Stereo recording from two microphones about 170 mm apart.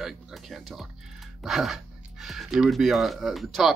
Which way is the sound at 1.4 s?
Centre (ahead or behind).